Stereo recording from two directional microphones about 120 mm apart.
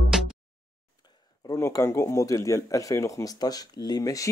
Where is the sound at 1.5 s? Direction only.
30° left (ahead or behind).